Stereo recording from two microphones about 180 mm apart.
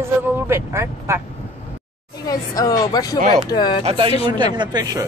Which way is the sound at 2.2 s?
20° left (ahead or behind).